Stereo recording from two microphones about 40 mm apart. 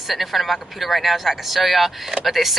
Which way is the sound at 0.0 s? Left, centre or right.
Centre.